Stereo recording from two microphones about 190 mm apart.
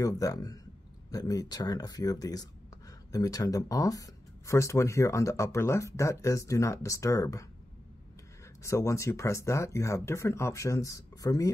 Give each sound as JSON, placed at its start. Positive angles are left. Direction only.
{"t": 0.0, "sound": "speech", "side_deg": 20}
{"t": 8.6, "sound": "speech", "side_deg": 15}